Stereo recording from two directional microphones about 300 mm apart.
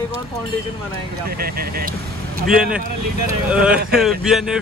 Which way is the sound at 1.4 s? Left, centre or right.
Right.